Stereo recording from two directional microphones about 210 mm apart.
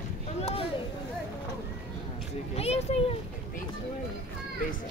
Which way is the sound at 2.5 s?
30° left (ahead or behind).